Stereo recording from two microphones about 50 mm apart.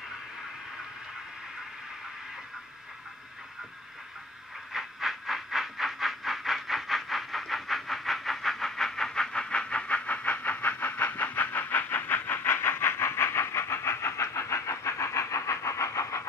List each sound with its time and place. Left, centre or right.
4.7 s train: centre; by 16.3 s left